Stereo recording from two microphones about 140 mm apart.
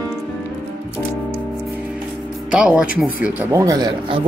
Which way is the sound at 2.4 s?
5° right (ahead or behind).